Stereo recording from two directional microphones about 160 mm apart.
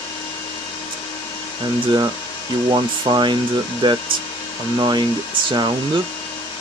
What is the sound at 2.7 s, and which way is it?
Speech, 30° right (ahead or behind).